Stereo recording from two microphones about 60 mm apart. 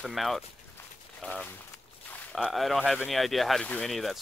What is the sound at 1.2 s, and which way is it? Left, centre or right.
Sanding, left.